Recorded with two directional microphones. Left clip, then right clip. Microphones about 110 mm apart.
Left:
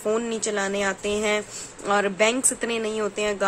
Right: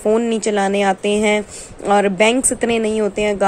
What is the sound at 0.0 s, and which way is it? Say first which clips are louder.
Speech: right 8 dB; 35° right (ahead or behind).